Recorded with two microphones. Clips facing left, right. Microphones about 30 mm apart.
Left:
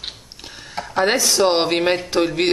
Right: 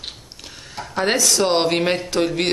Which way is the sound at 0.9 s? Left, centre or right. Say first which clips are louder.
Left 2 dB; centre.